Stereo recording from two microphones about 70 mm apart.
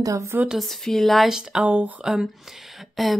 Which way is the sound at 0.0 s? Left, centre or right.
Right.